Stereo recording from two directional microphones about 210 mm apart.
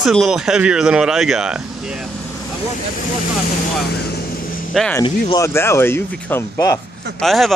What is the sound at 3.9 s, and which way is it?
Vehicle, 45° left (ahead or behind).